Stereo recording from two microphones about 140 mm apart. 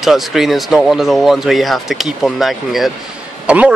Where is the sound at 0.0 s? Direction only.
Centre (ahead or behind).